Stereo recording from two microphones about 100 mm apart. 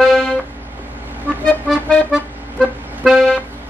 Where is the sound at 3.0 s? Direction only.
5° right (ahead or behind).